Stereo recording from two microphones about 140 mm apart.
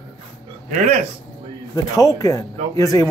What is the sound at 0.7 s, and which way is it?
Speech, 60° right (ahead or behind).